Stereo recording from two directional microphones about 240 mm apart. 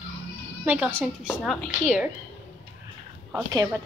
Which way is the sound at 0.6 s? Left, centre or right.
Centre.